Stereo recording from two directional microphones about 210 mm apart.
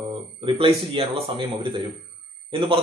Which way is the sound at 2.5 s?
25° right (ahead or behind).